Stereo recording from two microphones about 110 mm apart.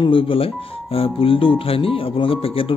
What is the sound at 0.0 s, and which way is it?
Speech, 55° left (ahead or behind).